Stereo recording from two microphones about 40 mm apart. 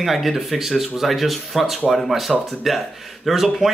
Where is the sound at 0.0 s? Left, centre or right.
Centre.